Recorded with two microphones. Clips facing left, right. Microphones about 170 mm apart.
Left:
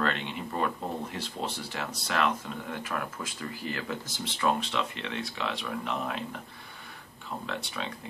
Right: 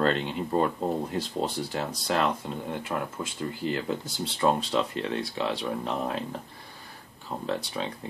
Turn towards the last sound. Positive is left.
turn(degrees=-35)  # may be behind; listen again after turning